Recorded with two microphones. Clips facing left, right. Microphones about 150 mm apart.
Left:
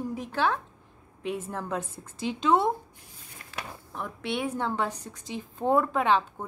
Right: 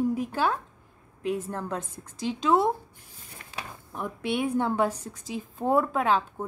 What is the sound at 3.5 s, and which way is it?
A woman's voice, 10° right (ahead or behind).